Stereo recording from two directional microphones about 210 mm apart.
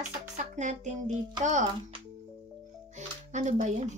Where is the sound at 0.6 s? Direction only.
35° right (ahead or behind).